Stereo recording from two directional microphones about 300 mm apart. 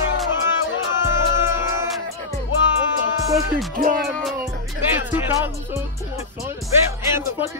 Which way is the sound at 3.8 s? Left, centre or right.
Right.